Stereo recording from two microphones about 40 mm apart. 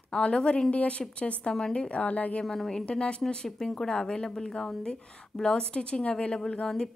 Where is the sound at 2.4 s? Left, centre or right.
Centre.